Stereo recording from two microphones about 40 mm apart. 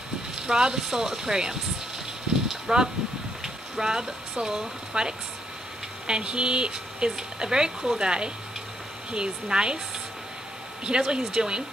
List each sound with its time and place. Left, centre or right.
0.4 s speech: centre
2.4 s a sound: centre
3.4 s speech: centre
10.8 s speech: right